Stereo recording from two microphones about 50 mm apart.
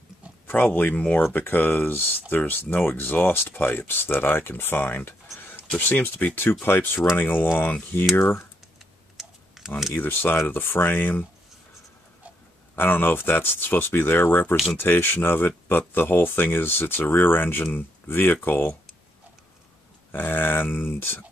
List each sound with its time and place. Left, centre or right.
0.5 s speech: left
1.2 s speech: left
9.1 s tick-tock: centre
9.9 s speech: left
12.7 s speech: left
20.1 s speech: left